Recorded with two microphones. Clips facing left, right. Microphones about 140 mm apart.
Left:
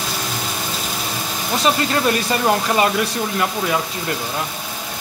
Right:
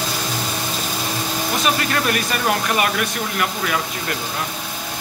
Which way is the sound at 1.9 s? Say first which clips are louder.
Left 3 dB; 25° left (ahead or behind).